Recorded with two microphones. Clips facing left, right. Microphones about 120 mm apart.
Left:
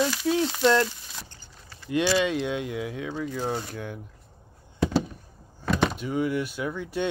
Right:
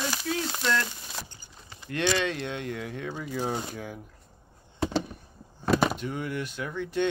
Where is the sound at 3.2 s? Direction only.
10° right (ahead or behind).